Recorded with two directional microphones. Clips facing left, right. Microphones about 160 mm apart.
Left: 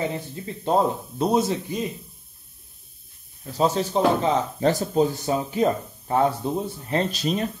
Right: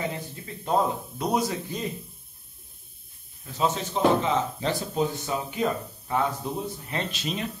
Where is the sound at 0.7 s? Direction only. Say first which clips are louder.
Left 3 dB; 30° left (ahead or behind).